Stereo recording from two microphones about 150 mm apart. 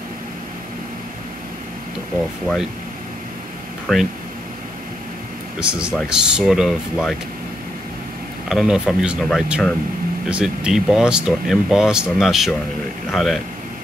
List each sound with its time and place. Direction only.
2.4 s speech: centre (ahead or behind)
3.9 s speech: centre (ahead or behind)
5.6 s speech: 5° right (ahead or behind)
8.5 s speech: 5° right (ahead or behind)